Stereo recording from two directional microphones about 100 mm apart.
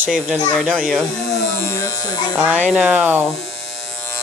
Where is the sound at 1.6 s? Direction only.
30° left (ahead or behind).